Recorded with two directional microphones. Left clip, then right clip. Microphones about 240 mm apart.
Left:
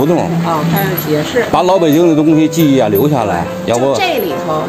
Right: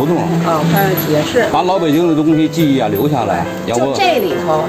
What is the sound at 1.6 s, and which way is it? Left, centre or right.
A man's voice, left.